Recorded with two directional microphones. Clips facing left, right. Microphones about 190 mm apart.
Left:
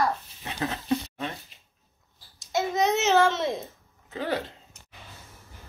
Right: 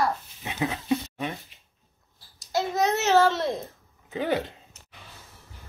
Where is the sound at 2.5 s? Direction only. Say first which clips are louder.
Even; centre (ahead or behind).